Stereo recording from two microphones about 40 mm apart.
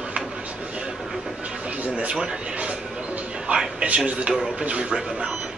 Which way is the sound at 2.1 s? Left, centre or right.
Right.